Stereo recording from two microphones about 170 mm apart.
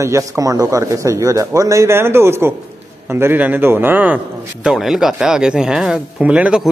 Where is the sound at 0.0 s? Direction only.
20° right (ahead or behind).